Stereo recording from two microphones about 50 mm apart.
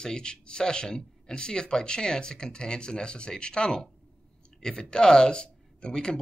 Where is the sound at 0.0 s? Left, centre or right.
Centre.